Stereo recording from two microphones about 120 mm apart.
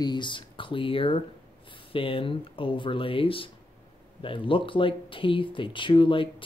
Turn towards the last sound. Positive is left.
turn(degrees=45)  # may be behind; listen again after turning